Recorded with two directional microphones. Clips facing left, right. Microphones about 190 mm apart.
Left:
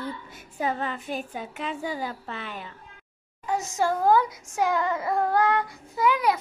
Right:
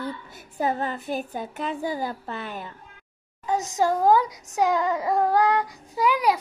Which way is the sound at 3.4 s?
15° right (ahead or behind).